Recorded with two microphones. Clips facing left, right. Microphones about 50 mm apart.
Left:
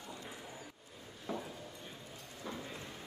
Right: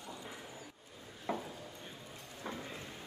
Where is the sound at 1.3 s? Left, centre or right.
Right.